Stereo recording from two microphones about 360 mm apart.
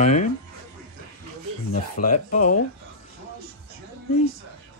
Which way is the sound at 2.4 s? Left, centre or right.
Left.